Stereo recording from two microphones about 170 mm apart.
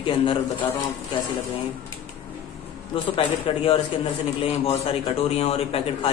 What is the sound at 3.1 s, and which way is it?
A man's voice, 35° left (ahead or behind).